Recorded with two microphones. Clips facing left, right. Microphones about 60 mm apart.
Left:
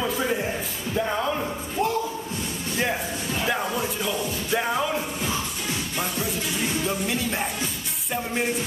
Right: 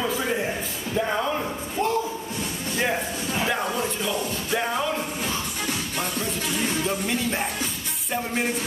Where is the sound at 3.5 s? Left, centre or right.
Centre.